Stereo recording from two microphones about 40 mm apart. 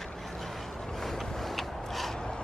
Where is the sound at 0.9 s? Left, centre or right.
Centre.